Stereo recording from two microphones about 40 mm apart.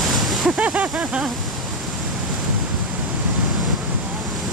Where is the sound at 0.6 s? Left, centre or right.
Right.